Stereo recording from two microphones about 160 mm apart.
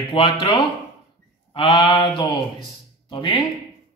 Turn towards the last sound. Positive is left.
turn(degrees=30)  # may be behind; listen again after turning